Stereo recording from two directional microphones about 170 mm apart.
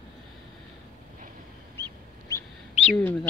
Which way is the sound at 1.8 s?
15° left (ahead or behind).